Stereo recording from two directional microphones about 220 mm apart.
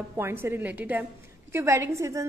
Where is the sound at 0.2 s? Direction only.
10° right (ahead or behind).